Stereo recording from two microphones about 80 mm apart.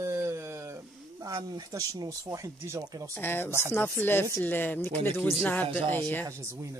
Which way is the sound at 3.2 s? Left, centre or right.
Left.